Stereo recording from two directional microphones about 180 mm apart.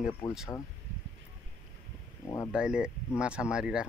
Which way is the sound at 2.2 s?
15° left (ahead or behind).